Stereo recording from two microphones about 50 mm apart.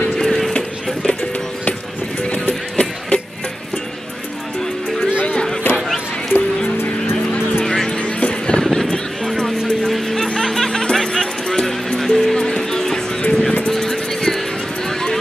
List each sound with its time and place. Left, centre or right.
0.2 s a sound: centre
2.2 s music: left
5.3 s a sound: centre
6.3 s music: left
7.5 s music: centre
8.0 s vehicle: left
8.7 s music: centre
13.7 s vehicle: centre
14.9 s a sound: centre